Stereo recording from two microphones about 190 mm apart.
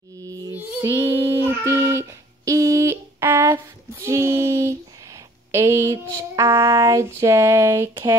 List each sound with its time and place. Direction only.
0.6 s child singing: 10° right (ahead or behind)